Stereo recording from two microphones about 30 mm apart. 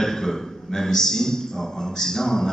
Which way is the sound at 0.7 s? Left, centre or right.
Centre.